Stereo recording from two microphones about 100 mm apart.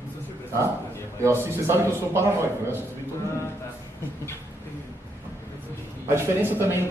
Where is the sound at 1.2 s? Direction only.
25° right (ahead or behind).